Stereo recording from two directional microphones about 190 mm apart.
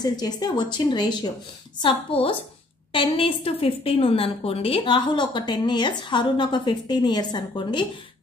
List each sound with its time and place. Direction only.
0.0 s a woman's voice: 20° left (ahead or behind)